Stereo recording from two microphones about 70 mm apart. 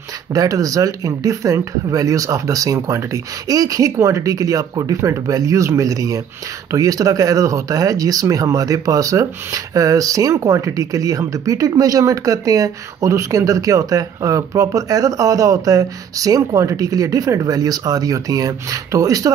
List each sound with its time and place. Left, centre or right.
0.3 s speech: right